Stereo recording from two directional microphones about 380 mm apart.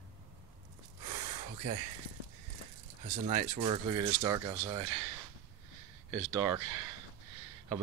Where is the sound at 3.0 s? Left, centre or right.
Centre.